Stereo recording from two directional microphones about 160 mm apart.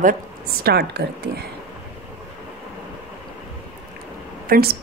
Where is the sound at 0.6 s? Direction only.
80° right.